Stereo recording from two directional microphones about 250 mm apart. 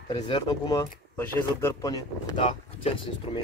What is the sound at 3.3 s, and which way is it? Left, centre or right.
Speech, left.